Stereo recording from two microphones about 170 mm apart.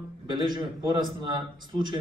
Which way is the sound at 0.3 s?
25° right (ahead or behind).